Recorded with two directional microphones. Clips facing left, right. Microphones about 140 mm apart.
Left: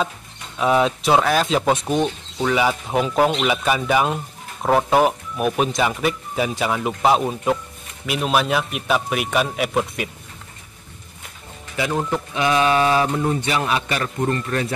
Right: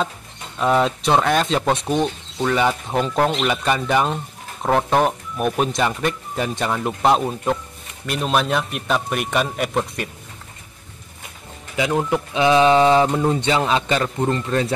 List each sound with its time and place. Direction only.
0.6 s speech: 5° left (ahead or behind)
11.7 s a man's voice: 15° right (ahead or behind)